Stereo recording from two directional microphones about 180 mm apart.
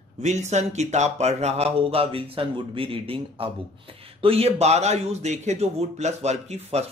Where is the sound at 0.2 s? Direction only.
40° right (ahead or behind).